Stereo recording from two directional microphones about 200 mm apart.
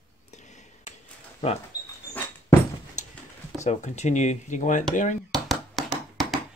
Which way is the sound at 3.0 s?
35° left (ahead or behind).